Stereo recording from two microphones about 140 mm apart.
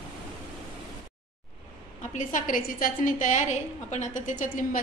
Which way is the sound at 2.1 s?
70° left (ahead or behind).